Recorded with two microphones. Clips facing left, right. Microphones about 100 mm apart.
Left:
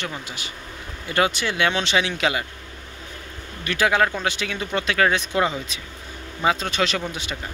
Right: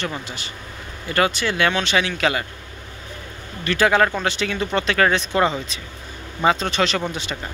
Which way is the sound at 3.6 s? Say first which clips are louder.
Right 3 dB; 10° left (ahead or behind).